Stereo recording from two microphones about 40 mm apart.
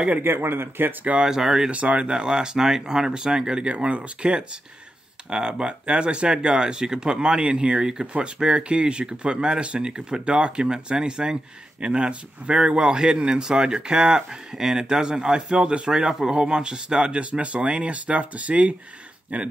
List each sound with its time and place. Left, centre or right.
0.2 s speech: right
1.1 s speech: centre
1.7 s speech: right
2.0 s speech: centre; by 19.5 s right